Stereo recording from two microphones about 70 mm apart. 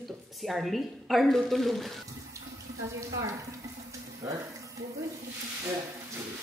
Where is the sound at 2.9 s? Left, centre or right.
Right.